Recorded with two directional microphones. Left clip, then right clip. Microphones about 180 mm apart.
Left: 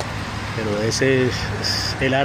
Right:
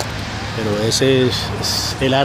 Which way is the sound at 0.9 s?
20° right (ahead or behind).